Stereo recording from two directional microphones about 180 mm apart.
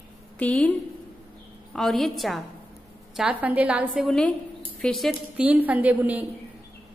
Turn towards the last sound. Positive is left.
turn(degrees=-10)  # may be behind; listen again after turning